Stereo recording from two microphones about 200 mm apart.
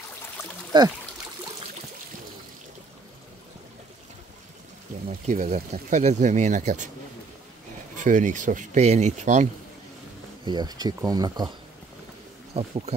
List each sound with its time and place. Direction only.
0.7 s speech: 20° right (ahead or behind)
5.2 s speech: 35° right (ahead or behind)
8.0 s speech: 40° right (ahead or behind)
10.4 s speech: 20° right (ahead or behind)
12.5 s speech: 30° right (ahead or behind)